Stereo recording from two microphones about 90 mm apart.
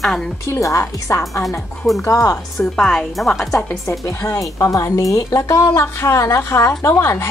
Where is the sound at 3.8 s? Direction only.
40° left (ahead or behind).